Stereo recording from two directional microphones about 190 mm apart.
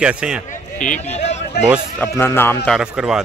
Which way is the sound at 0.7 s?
40° left (ahead or behind).